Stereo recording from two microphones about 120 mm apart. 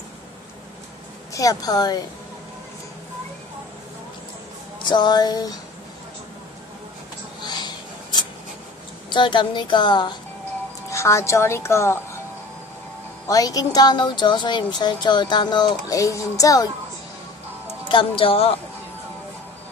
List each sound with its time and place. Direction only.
1.3 s speech: 30° left (ahead or behind)
4.8 s speech: 40° left (ahead or behind)
7.4 s a sound: 35° left (ahead or behind)
9.1 s speech: 40° left (ahead or behind)
10.9 s speech: 25° left (ahead or behind)
13.3 s speech: 30° left (ahead or behind)
17.8 s speech: 45° left (ahead or behind)